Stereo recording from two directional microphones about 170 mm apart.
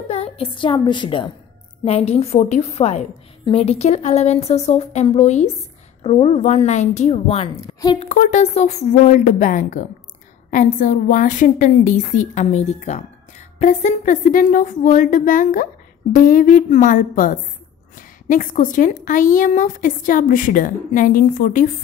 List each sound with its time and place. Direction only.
0.1 s a woman's voice: 35° left (ahead or behind)
7.5 s a woman's voice: 20° left (ahead or behind)
8.0 s speech: 45° left (ahead or behind)